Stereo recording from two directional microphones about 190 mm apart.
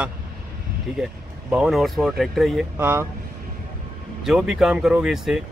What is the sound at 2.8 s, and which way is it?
Speech, 10° right (ahead or behind).